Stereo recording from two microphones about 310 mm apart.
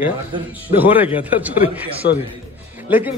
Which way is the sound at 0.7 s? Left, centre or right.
Centre.